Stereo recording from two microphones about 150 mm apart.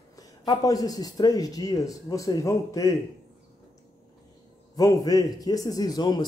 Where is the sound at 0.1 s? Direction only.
25° left (ahead or behind).